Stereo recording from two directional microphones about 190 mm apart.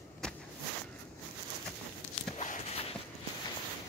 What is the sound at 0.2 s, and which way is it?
Walk, 5° left (ahead or behind).